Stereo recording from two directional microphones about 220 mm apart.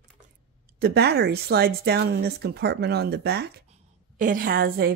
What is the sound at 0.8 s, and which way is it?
Speech, 45° right (ahead or behind).